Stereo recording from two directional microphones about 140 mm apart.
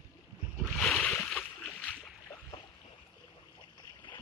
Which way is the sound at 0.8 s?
5° left (ahead or behind).